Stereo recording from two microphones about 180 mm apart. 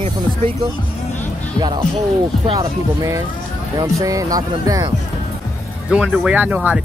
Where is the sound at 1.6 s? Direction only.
25° right (ahead or behind).